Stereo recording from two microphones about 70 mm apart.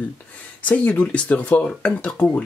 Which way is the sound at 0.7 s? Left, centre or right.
Centre.